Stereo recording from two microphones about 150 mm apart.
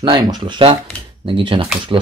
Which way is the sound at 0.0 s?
30° right (ahead or behind).